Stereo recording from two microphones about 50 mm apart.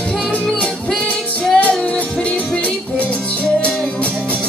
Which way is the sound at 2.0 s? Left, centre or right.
Left.